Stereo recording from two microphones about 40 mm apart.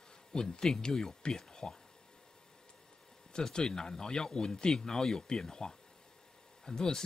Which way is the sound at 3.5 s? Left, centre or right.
Centre.